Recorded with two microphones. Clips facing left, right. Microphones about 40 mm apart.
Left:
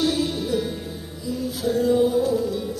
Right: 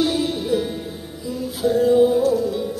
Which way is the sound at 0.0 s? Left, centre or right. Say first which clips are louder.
Right 2 dB; centre.